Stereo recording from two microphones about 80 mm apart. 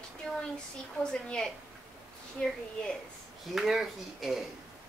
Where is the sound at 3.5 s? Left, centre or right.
Centre.